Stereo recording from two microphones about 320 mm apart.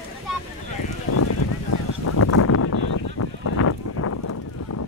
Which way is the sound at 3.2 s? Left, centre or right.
Left.